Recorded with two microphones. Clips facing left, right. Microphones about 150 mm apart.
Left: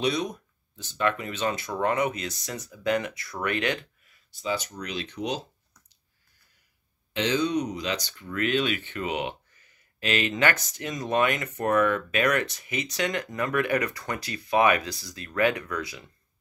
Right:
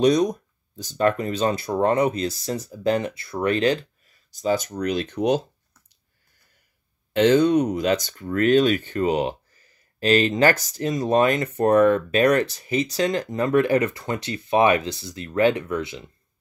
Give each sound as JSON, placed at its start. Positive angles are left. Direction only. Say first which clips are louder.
{"t": 0.0, "sound": "speech", "louder": "right 9 dB", "side_deg": -40}
{"t": 7.2, "sound": "speech", "louder": "right 9 dB", "side_deg": -50}